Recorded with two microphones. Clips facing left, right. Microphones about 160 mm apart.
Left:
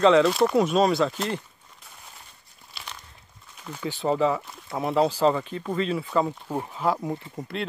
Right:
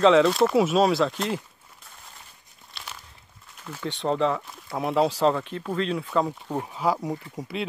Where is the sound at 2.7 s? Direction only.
5° right (ahead or behind).